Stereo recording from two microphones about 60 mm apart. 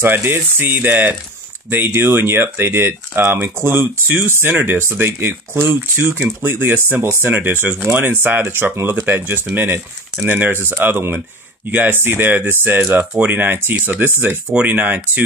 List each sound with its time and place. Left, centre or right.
0.0 s speech: right